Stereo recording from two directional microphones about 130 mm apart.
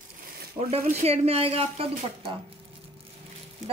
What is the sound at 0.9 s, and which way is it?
A woman's voice, 55° right (ahead or behind).